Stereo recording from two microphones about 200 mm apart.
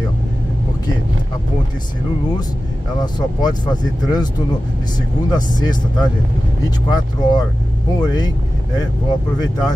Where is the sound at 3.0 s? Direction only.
20° left (ahead or behind).